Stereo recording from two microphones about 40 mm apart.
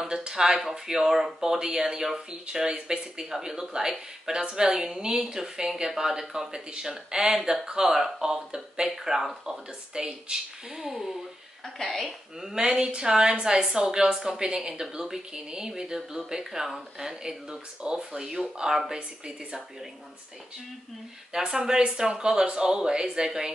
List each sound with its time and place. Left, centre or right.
0.1 s speech: centre
11.6 s a woman's voice: centre
12.4 s speech: centre
21.3 s speech: centre